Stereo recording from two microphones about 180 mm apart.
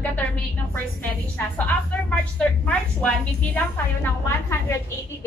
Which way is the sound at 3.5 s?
15° left (ahead or behind).